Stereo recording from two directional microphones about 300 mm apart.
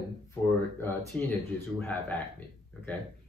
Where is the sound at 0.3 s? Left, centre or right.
Centre.